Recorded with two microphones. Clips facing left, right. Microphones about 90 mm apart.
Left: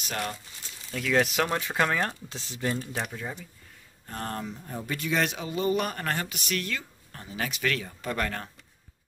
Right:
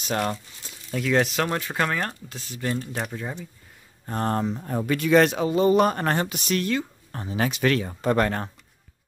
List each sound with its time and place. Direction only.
0.9 s speech: 5° right (ahead or behind)
2.2 s speech: 25° left (ahead or behind)
2.6 s speech: 5° left (ahead or behind)
3.0 s speech: 5° right (ahead or behind)
4.0 s speech: 35° right (ahead or behind)
4.6 s speech: 75° right (ahead or behind)
5.3 s speech: 40° right (ahead or behind)
7.1 s speech: 35° right (ahead or behind)